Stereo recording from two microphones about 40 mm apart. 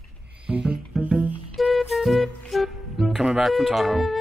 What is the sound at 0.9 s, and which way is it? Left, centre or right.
Music, centre.